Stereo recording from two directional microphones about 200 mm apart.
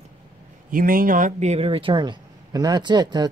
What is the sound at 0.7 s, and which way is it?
Speech, 45° right (ahead or behind).